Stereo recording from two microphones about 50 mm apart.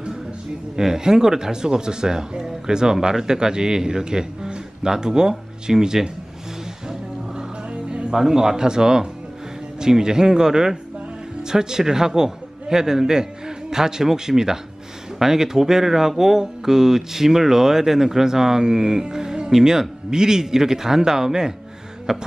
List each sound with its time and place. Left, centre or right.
0.7 s speech: centre
6.9 s music: centre
8.1 s a man's voice: centre